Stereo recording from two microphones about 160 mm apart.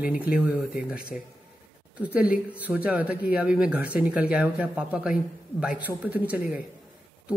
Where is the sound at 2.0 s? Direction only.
10° right (ahead or behind).